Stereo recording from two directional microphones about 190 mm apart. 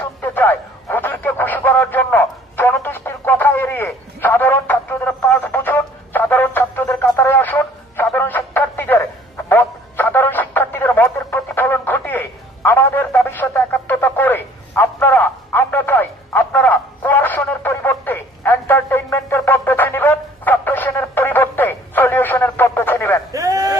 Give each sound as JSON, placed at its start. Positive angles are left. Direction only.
{"t": 0.0, "sound": "radio", "side_deg": 10}
{"t": 9.5, "sound": "music", "side_deg": 10}
{"t": 23.3, "sound": "a sound", "side_deg": -15}